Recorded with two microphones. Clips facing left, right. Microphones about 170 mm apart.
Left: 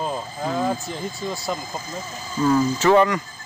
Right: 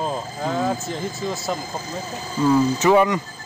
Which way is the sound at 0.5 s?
Centre (ahead or behind).